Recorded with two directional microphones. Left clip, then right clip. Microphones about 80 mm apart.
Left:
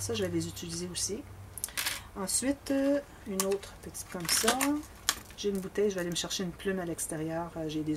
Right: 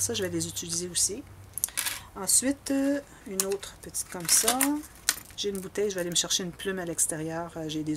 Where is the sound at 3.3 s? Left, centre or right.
Centre.